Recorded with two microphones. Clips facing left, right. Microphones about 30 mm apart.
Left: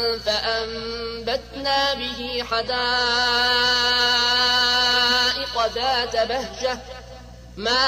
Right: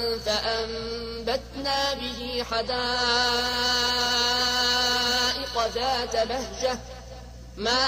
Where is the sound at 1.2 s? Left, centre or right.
Left.